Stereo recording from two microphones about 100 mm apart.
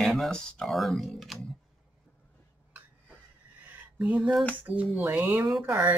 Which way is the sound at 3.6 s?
15° right (ahead or behind).